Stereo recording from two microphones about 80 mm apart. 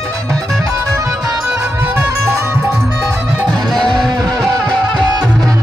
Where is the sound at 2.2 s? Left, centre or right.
Right.